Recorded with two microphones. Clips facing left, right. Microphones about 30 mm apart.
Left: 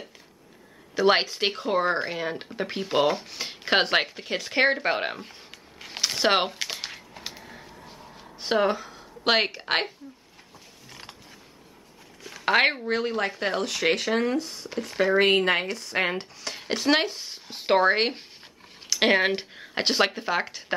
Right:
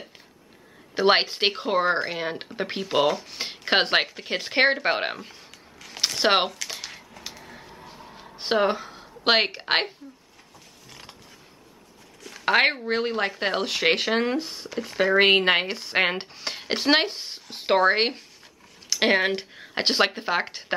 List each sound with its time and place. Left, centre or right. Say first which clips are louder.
0.9 s speech: right 1 dB; right
4.3 s speech: right 1 dB; right
6.7 s a sound: left 1 dB; centre
7.4 s a sound: right 1 dB; centre
8.4 s speech: right 1 dB; centre
10.9 s mechanisms: left 1 dB; centre
12.3 s speech: right 1 dB; centre
12.8 s speech: right 1 dB; centre
14.8 s speech: right 1 dB; centre
15.1 s speech: right 3 dB; right
17.5 s speech: right 1 dB; centre